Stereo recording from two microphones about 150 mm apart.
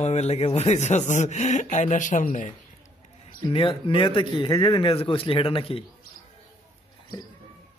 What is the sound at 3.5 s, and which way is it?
A man's voice, 35° left (ahead or behind).